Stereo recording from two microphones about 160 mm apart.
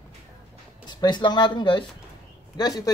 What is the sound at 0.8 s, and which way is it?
Speech, 30° left (ahead or behind).